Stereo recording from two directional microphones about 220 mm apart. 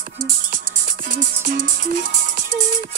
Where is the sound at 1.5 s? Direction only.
40° right (ahead or behind).